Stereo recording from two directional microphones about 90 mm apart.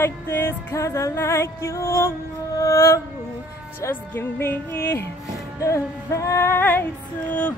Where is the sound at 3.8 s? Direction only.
25° left (ahead or behind).